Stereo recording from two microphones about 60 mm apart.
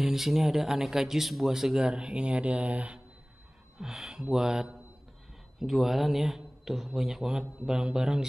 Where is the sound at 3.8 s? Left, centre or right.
Centre.